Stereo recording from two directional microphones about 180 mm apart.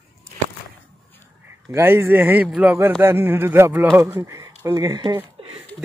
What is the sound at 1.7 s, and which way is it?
Speech, 15° right (ahead or behind).